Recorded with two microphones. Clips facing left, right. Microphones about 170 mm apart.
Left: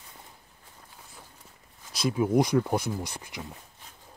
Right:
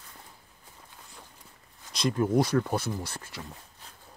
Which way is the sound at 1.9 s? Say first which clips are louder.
Left 1 dB; 5° left (ahead or behind).